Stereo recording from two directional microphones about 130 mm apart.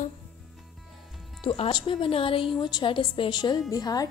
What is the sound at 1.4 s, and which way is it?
A woman's voice, 45° left (ahead or behind).